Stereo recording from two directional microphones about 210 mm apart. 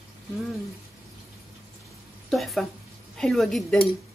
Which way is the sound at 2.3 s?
Centre (ahead or behind).